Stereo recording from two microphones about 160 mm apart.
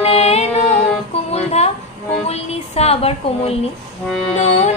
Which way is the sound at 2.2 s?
40° left (ahead or behind).